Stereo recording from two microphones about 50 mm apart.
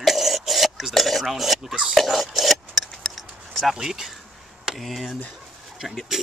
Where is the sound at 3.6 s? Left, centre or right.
Centre.